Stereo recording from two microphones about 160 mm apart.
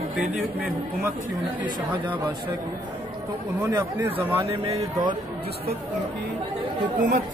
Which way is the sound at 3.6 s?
20° right (ahead or behind).